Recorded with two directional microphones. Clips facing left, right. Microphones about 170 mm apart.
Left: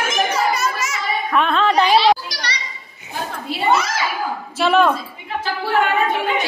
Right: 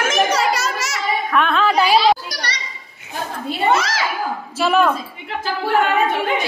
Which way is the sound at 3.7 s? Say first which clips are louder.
Even; 90° right.